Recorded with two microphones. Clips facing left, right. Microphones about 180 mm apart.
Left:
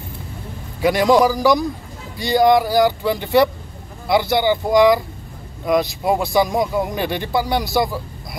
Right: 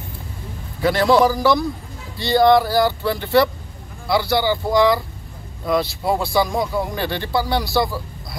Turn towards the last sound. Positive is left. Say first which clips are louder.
# left 1 dB
turn(degrees=20)  # may be behind; listen again after turning